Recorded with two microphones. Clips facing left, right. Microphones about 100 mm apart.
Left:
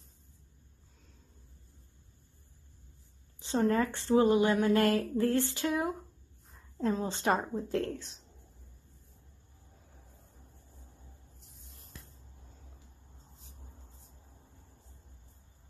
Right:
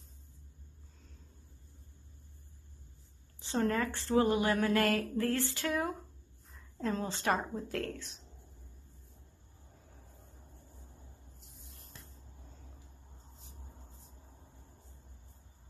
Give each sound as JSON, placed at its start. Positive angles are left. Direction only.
{"t": 3.6, "sound": "speech", "side_deg": 25}